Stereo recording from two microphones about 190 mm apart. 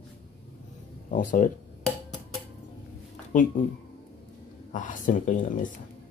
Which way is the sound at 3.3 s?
45° left (ahead or behind).